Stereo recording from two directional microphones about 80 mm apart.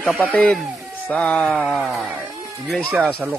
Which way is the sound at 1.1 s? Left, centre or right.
Centre.